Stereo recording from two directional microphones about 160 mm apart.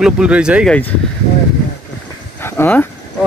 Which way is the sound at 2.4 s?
15° left (ahead or behind).